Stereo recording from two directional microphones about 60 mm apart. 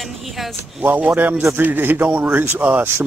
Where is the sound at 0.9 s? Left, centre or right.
Right.